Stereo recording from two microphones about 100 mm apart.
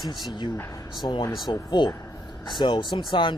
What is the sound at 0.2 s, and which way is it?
Speech, 45° left (ahead or behind).